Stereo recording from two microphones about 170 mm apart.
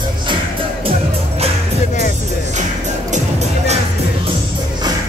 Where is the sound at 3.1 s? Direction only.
40° right (ahead or behind).